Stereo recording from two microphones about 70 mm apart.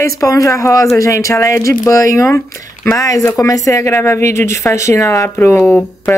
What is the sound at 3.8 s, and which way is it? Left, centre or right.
Speech, left.